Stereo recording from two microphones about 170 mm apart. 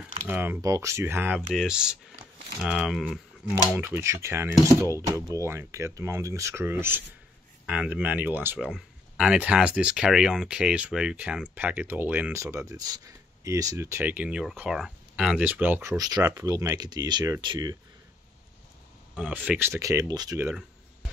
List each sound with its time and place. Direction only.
0.3 s speech: 10° right (ahead or behind)
3.7 s speech: 15° right (ahead or behind)
19.1 s speech: 5° right (ahead or behind)